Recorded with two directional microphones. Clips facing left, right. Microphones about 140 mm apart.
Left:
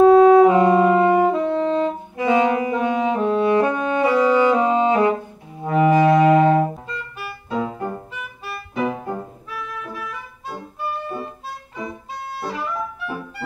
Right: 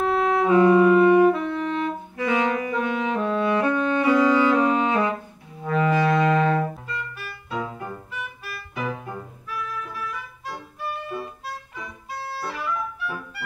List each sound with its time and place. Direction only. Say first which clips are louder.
0.0 s saxophone: left 12 dB; 20° left (ahead or behind)
2.1 s saxophone: left 6 dB; 20° left (ahead or behind)
5.6 s brass instrument: left 6 dB; 20° left (ahead or behind)
7.4 s music: left 6 dB; 35° left (ahead or behind)
10.9 s music: left 3 dB; 35° left (ahead or behind)
11.8 s music: left 6 dB; 20° left (ahead or behind)